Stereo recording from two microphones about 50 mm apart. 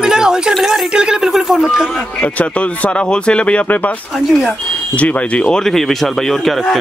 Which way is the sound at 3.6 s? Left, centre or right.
Left.